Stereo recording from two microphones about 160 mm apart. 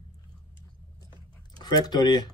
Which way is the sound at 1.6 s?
25° left (ahead or behind).